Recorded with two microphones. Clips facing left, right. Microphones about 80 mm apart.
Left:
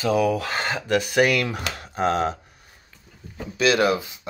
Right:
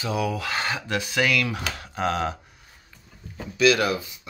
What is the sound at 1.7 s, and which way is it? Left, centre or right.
Speech, left.